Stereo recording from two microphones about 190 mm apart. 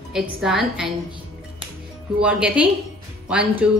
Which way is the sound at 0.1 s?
Centre (ahead or behind).